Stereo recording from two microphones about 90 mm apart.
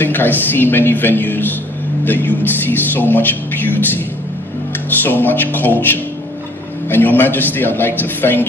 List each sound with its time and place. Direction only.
0.0 s a man's voice: 20° left (ahead or behind)
5.0 s a man's voice: 20° left (ahead or behind)